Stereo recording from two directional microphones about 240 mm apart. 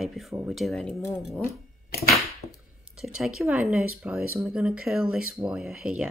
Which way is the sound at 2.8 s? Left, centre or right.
Centre.